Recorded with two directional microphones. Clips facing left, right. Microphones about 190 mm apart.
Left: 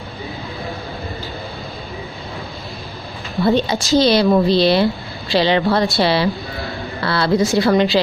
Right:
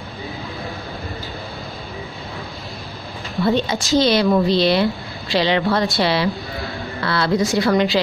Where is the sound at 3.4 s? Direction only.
35° left (ahead or behind).